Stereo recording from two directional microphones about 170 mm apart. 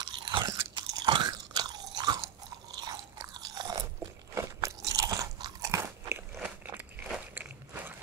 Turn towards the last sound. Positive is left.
turn(degrees=-10)  # may be behind; listen again after turning